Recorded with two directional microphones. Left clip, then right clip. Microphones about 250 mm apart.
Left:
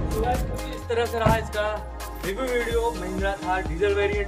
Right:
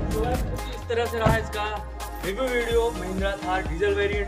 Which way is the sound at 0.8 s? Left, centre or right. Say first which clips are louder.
Left 1 dB; centre.